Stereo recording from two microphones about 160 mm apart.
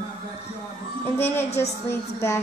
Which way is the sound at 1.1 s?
15° left (ahead or behind).